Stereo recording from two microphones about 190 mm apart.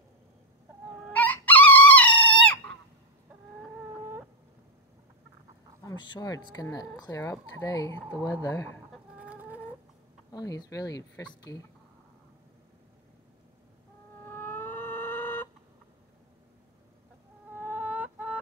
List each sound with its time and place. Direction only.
1.1 s chicken: 10° left (ahead or behind)
5.9 s speech: 20° left (ahead or behind)
8.9 s chicken: 5° right (ahead or behind)
10.3 s speech: 20° left (ahead or behind)
14.2 s music: 10° left (ahead or behind)
17.6 s fowl: 10° right (ahead or behind)